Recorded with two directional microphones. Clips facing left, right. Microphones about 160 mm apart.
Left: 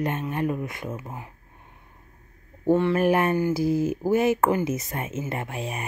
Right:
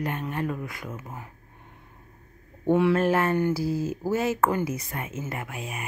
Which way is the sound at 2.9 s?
15° left (ahead or behind).